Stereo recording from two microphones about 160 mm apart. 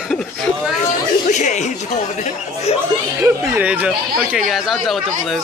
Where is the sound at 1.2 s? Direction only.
50° left (ahead or behind).